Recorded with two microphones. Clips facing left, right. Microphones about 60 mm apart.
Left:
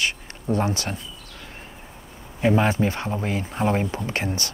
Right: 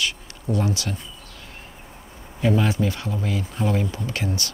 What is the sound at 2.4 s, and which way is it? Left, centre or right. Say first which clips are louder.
Speech: left 2 dB; left.